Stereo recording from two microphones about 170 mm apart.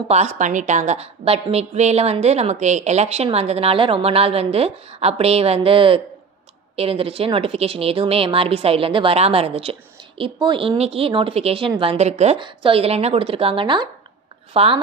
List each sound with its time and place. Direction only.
0.1 s a woman's voice: 40° right (ahead or behind)
12.4 s a woman's voice: 30° right (ahead or behind)